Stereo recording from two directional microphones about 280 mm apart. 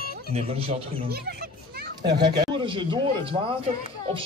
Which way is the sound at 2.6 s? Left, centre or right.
Centre.